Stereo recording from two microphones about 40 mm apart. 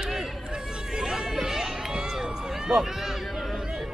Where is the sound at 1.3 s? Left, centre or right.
Centre.